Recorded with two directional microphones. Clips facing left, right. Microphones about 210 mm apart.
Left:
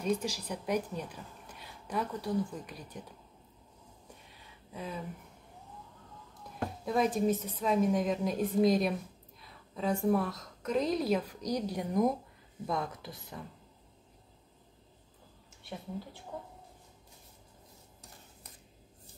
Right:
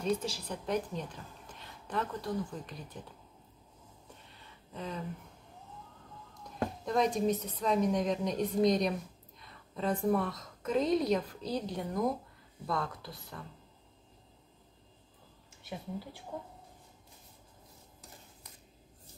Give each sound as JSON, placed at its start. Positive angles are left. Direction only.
{"t": 0.0, "sound": "a woman's voice", "side_deg": 10}
{"t": 4.3, "sound": "a sound", "side_deg": 10}
{"t": 6.8, "sound": "a woman's voice", "side_deg": 5}